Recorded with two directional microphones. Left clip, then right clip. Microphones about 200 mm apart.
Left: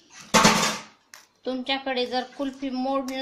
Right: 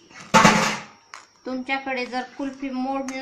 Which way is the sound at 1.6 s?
45° left (ahead or behind).